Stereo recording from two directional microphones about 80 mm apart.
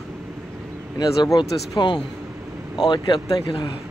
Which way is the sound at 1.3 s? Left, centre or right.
Left.